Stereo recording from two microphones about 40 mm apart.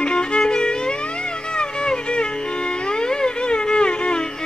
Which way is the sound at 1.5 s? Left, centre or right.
Left.